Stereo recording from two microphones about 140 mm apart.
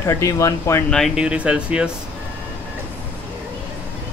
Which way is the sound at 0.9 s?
Centre (ahead or behind).